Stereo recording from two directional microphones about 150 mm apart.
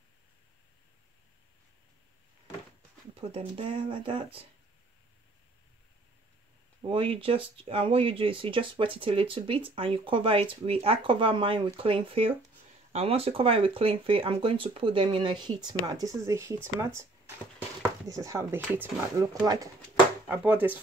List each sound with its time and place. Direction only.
3.2 s speech: 40° right (ahead or behind)
6.9 s speech: 35° right (ahead or behind); by 16.5 s 20° right (ahead or behind)
18.0 s speech: 20° right (ahead or behind)
19.4 s speech: 25° right (ahead or behind)
20.2 s speech: 10° right (ahead or behind)